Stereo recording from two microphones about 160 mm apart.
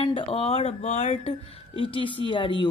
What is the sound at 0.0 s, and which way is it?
A woman's voice, 30° left (ahead or behind).